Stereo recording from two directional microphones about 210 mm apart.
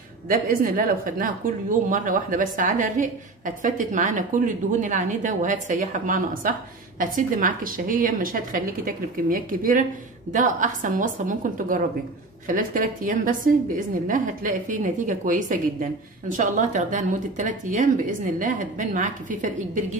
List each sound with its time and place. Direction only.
0.3 s speech: 40° right (ahead or behind)